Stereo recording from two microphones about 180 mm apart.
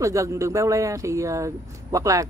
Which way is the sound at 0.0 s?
15° right (ahead or behind).